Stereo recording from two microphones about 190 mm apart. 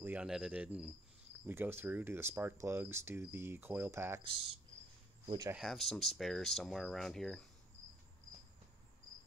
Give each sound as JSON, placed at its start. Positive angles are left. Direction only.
{"t": 0.0, "sound": "cricket", "side_deg": -5}
{"t": 1.4, "sound": "speech", "side_deg": -10}
{"t": 4.2, "sound": "speech", "side_deg": -30}
{"t": 5.5, "sound": "speech", "side_deg": 0}